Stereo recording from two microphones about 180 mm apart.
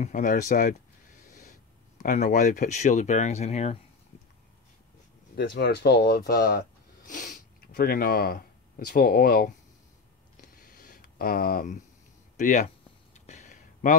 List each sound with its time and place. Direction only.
0.0 s speech: 45° left (ahead or behind)
2.0 s speech: 45° left (ahead or behind)
5.3 s speech: 55° left (ahead or behind)
7.1 s speech: 50° left (ahead or behind)
10.4 s a sound: 55° left (ahead or behind)